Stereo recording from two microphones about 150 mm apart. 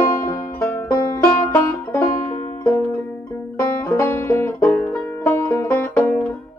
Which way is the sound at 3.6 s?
15° left (ahead or behind).